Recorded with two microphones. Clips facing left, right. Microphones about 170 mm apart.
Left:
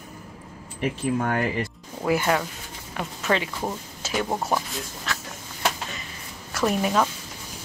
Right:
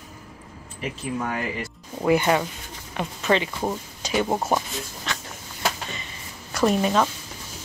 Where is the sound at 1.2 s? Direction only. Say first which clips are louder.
Left 1 dB; 55° left (ahead or behind).